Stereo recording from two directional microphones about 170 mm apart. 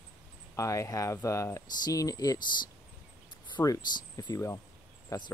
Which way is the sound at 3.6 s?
20° left (ahead or behind).